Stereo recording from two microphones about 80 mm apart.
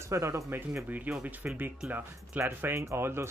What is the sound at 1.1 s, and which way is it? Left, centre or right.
Speech, centre.